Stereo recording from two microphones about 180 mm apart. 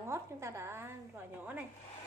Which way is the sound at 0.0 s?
15° right (ahead or behind).